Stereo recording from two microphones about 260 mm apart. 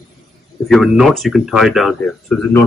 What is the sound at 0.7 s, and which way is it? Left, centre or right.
Speech, centre.